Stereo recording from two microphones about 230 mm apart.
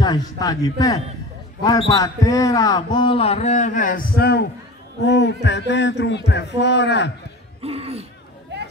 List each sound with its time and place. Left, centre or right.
0.0 s a man's voice: centre; by 7.1 s left
7.6 s speech: right